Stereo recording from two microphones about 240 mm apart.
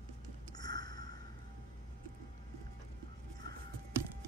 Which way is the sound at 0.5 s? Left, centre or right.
Centre.